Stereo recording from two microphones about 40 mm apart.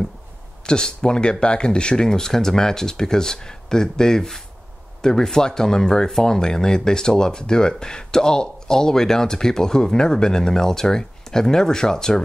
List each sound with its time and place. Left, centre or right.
0.7 s speech: centre